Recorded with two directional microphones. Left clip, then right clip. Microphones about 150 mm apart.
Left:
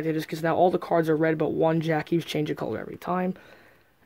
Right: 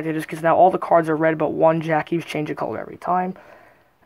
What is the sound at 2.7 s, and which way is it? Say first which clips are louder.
Speech: right 7 dB; 40° left (ahead or behind).